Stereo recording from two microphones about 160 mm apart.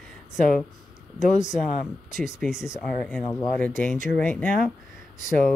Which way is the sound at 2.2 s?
5° right (ahead or behind).